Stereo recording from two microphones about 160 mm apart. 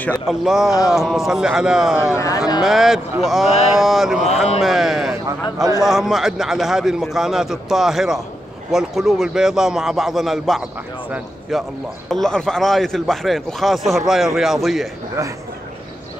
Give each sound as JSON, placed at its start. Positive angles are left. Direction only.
{"t": 0.3, "sound": "speech", "side_deg": 0}
{"t": 2.1, "sound": "speech", "side_deg": 20}
{"t": 2.6, "sound": "a man's voice", "side_deg": 0}